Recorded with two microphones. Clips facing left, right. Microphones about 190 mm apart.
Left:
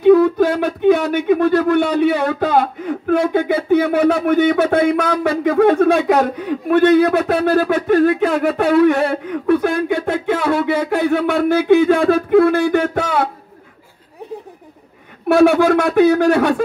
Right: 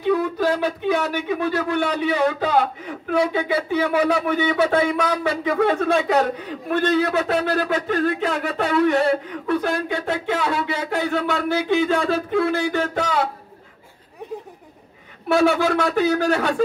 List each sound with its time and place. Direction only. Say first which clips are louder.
0.0 s speech: left 9 dB; 55° left (ahead or behind)
15.2 s speech: left 6 dB; 55° left (ahead or behind)